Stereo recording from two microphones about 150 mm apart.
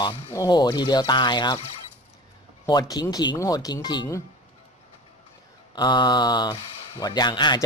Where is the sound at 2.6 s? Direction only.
25° left (ahead or behind).